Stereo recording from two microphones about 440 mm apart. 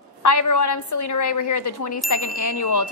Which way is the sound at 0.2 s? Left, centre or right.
Left.